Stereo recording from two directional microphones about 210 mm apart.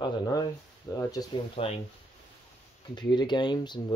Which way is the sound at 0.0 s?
20° left (ahead or behind).